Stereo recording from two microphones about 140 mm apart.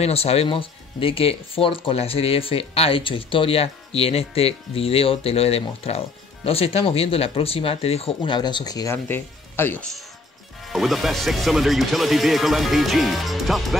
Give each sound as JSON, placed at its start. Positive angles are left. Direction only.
{"t": 0.0, "sound": "speech", "side_deg": 45}
{"t": 8.9, "sound": "speech", "side_deg": 15}
{"t": 10.6, "sound": "speech", "side_deg": 0}